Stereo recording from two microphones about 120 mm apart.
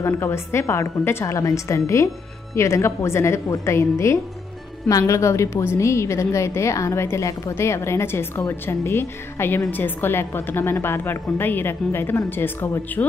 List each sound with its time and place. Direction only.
0.0 s a woman's voice: 20° left (ahead or behind)